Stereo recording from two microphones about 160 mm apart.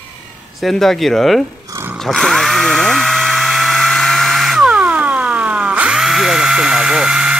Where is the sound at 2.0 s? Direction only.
Centre (ahead or behind).